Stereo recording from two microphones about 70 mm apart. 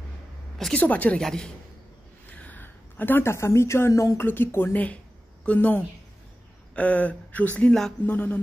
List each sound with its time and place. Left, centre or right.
0.7 s speech: left
1.1 s speech: centre
2.2 s a sound: left
3.9 s speech: left
4.2 s speech: left
4.7 s a sound: centre
6.7 s speech: left